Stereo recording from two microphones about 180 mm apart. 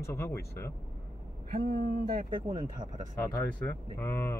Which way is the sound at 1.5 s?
60° right (ahead or behind).